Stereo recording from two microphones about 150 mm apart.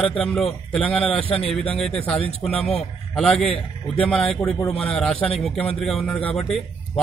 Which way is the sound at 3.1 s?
5° left (ahead or behind).